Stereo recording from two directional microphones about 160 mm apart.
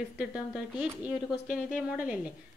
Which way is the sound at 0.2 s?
5° right (ahead or behind).